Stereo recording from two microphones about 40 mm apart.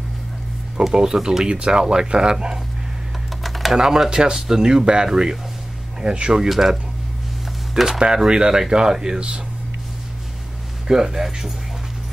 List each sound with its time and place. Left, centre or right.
0.8 s speech: centre
3.4 s typing: centre
3.7 s speech: centre
6.5 s speech: centre
8.0 s speech: right
10.9 s speech: centre